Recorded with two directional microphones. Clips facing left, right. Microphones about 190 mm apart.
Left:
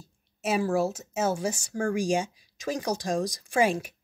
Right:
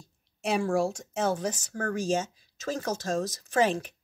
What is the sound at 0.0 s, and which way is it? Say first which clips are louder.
Speech: left 1 dB; 5° left (ahead or behind).